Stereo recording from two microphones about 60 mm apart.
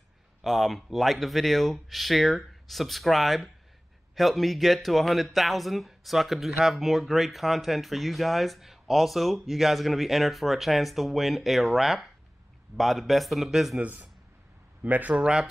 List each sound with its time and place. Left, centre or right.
0.4 s speech: centre
13.7 s a man's voice: right
15.1 s speech: centre